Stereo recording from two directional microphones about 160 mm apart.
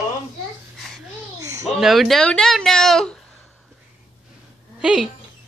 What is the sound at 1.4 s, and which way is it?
Babbling, 20° right (ahead or behind).